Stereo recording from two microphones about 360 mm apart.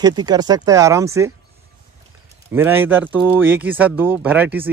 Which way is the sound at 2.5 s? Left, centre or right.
Centre.